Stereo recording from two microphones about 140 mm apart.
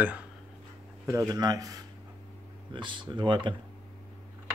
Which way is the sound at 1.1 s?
25° right (ahead or behind).